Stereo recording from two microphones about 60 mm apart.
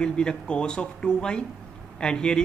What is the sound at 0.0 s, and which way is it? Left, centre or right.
Speech, centre.